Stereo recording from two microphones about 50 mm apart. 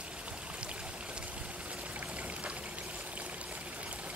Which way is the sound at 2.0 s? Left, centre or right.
Right.